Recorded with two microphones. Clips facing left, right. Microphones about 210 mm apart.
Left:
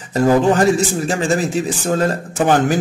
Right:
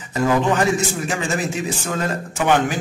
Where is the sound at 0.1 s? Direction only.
35° left (ahead or behind).